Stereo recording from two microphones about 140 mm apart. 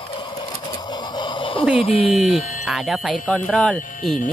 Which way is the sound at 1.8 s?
40° left (ahead or behind).